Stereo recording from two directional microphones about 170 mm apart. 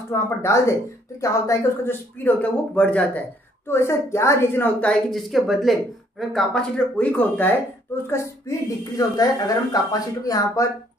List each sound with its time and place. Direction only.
0.1 s speech: 15° left (ahead or behind)